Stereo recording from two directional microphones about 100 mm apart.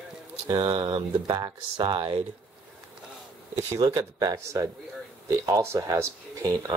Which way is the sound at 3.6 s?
35° right (ahead or behind).